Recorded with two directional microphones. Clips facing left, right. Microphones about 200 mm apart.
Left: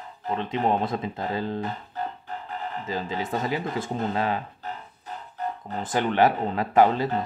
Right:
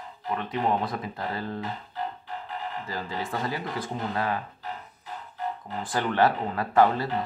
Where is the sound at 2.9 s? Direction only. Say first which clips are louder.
Left 6 dB; 20° left (ahead or behind).